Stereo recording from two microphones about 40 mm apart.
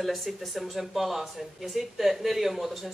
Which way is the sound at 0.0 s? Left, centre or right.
Centre.